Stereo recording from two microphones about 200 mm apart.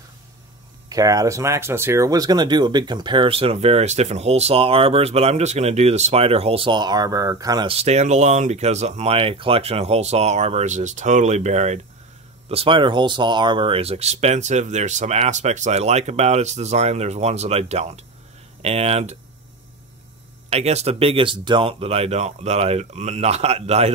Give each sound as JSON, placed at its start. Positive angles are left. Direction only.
{"t": 0.8, "sound": "speech", "side_deg": -15}
{"t": 20.4, "sound": "speech", "side_deg": -35}